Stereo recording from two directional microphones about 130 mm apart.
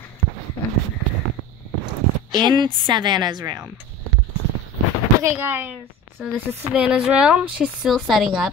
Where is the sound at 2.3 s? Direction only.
35° right (ahead or behind).